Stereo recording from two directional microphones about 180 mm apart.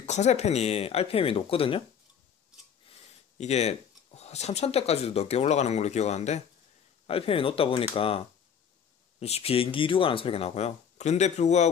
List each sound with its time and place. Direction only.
0.0 s speech: 40° left (ahead or behind)
3.3 s speech: 40° left (ahead or behind)
9.2 s speech: 35° left (ahead or behind)